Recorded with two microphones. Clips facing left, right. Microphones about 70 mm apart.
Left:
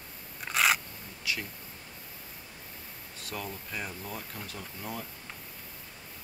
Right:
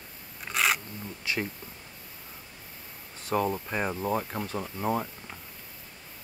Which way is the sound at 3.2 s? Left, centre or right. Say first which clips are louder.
Right 12 dB; right.